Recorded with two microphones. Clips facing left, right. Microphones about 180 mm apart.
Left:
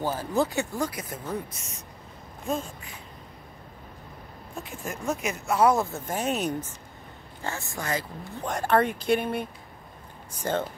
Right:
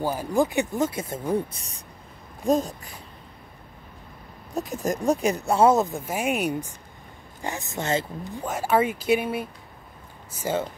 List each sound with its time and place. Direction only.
0.0 s speech: 15° right (ahead or behind); by 2.9 s 40° right (ahead or behind)
4.6 s speech: 40° right (ahead or behind)
8.5 s speech: 5° right (ahead or behind)